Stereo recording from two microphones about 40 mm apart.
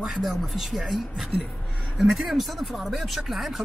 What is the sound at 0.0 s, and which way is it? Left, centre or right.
Speech, centre.